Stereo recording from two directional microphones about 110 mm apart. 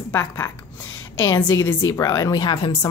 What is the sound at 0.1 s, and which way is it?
A woman's voice, 25° left (ahead or behind).